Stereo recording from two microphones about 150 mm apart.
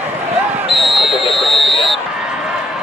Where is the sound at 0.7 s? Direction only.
Centre (ahead or behind).